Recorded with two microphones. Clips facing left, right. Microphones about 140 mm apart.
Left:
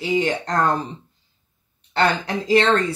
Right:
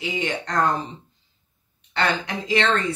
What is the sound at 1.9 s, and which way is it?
Speech, 40° left (ahead or behind).